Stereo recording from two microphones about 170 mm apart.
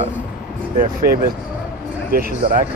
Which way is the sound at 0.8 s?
60° right (ahead or behind).